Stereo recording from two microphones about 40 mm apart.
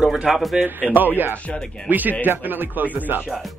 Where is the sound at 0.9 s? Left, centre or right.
Right.